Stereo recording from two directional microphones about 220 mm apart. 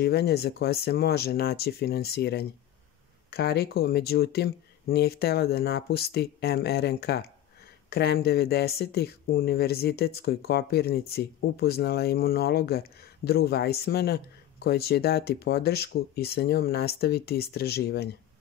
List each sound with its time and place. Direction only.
0.0 s speech: 45° left (ahead or behind)